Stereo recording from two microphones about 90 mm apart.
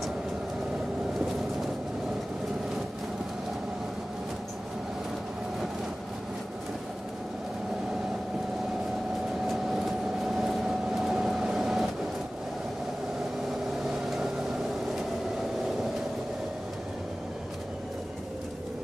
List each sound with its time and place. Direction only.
9.5 s vehicle: centre (ahead or behind)